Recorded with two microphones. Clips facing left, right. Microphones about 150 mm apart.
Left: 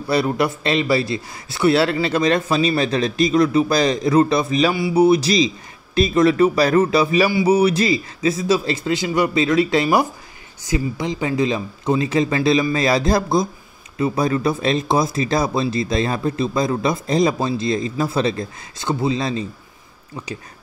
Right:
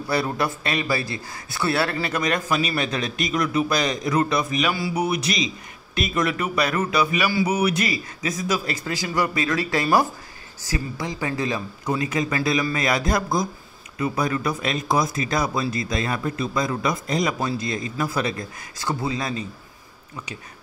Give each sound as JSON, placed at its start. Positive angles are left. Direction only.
{"t": 0.1, "sound": "a man's voice", "side_deg": 20}